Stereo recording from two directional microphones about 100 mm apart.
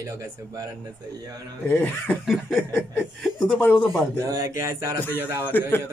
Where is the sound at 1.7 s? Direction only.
20° left (ahead or behind).